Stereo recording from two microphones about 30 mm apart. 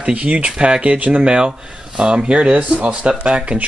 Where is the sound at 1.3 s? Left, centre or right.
Right.